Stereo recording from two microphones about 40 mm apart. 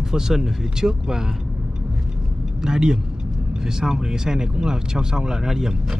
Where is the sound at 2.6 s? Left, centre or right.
Centre.